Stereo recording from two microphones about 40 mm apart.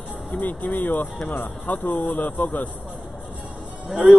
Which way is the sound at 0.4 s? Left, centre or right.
Left.